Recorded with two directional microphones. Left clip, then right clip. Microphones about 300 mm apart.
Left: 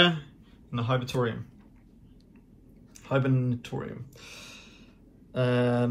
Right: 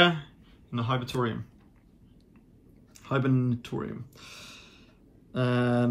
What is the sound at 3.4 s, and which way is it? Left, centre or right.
Speech, centre.